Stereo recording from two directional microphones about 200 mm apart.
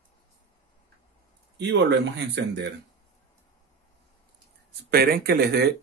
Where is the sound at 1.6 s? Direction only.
60° right (ahead or behind).